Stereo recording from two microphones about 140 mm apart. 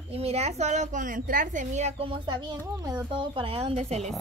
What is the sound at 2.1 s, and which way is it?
A woman's voice, 35° right (ahead or behind).